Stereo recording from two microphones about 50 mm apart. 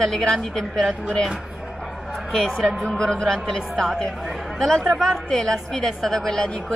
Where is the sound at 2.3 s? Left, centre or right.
Centre.